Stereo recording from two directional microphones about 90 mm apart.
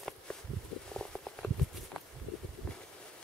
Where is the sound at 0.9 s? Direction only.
10° left (ahead or behind).